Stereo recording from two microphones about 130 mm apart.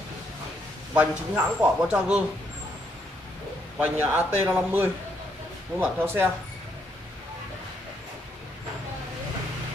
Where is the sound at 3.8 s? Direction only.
15° right (ahead or behind).